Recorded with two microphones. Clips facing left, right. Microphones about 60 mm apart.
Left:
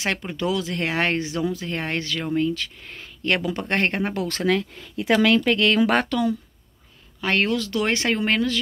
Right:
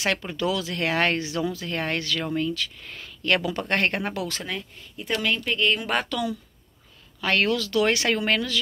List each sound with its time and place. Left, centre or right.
0.3 s speech: left
4.5 s speech: left
7.2 s speech: left